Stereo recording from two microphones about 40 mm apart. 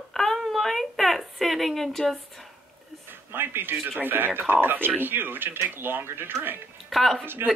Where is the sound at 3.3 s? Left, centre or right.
Right.